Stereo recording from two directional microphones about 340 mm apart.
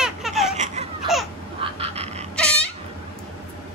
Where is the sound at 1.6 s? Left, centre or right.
Centre.